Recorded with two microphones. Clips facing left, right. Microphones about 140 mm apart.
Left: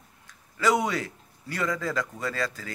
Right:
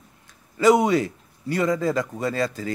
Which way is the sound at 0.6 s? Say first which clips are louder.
Right 8 dB; 20° right (ahead or behind).